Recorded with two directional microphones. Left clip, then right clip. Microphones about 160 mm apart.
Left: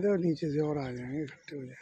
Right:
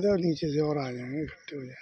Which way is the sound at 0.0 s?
10° right (ahead or behind).